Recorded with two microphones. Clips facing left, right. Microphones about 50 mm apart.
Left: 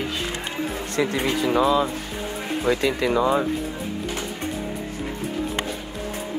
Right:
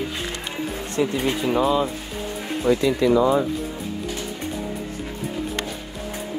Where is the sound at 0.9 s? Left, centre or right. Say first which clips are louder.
Even; left.